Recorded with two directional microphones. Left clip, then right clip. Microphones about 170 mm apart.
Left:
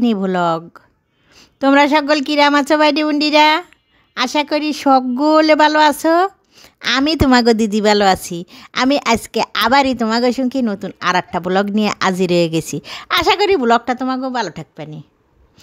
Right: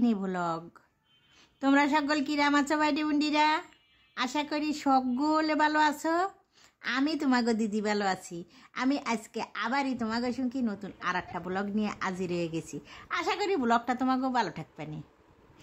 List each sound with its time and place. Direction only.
0.0 s a woman's voice: 50° left (ahead or behind)